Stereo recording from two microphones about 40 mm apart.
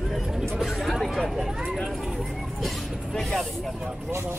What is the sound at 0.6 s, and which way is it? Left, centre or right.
Chatter, centre.